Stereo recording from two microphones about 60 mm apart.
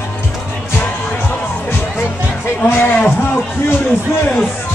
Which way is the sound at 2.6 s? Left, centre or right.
Left.